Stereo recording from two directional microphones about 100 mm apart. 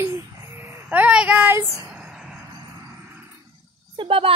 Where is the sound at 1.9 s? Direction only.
10° right (ahead or behind).